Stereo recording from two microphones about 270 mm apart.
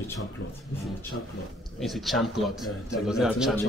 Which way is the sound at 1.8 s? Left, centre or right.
Centre.